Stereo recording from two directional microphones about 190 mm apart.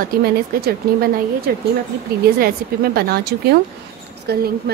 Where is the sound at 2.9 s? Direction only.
55° right (ahead or behind).